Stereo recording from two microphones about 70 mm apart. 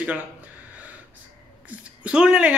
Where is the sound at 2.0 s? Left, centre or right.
Centre.